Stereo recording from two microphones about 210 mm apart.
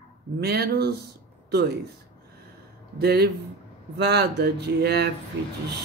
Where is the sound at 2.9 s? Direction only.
50° right (ahead or behind).